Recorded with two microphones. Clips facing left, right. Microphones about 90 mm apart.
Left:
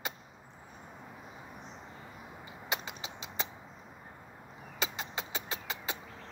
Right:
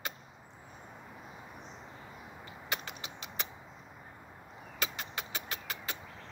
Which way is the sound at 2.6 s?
20° left (ahead or behind).